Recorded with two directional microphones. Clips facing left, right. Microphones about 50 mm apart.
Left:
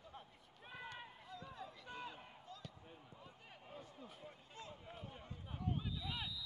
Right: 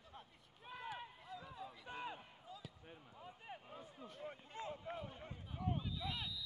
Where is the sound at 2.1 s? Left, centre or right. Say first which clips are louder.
Left 1 dB; centre.